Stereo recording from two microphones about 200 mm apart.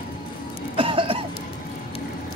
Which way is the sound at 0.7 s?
25° right (ahead or behind).